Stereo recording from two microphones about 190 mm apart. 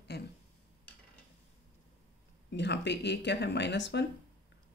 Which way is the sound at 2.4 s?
65° left (ahead or behind).